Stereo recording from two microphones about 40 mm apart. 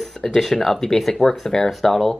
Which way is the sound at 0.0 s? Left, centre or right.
Centre.